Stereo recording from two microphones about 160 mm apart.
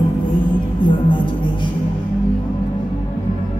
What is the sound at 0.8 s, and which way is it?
Music, 30° left (ahead or behind).